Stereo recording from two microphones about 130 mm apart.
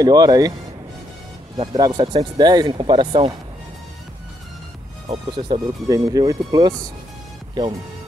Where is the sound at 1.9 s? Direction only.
40° right (ahead or behind).